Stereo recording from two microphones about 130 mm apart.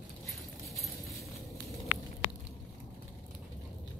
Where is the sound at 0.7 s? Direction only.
Centre (ahead or behind).